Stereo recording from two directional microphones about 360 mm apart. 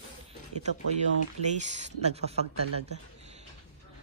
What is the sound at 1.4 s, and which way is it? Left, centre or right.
Speech, centre.